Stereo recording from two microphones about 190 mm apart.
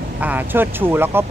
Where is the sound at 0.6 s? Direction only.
10° right (ahead or behind).